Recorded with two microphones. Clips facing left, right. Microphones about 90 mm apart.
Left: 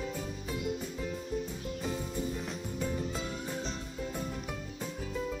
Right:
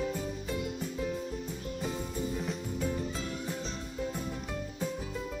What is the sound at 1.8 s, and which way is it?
Music, centre (ahead or behind).